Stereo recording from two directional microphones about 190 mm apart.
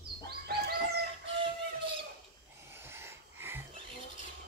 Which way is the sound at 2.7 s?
10° right (ahead or behind).